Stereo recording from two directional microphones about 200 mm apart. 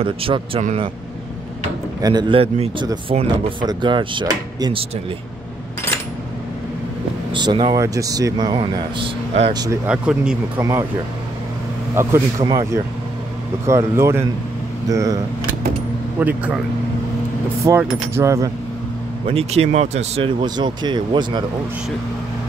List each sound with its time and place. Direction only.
0.0 s speech: 25° right (ahead or behind)
2.0 s speech: 20° right (ahead or behind)
7.3 s speech: 20° right (ahead or behind)
9.8 s speech: 5° right (ahead or behind)
10.6 s speech: 15° right (ahead or behind)
11.9 s speech: 15° right (ahead or behind)
16.2 s speech: 10° right (ahead or behind)
17.6 s speech: 15° right (ahead or behind)
19.2 s speech: 30° right (ahead or behind)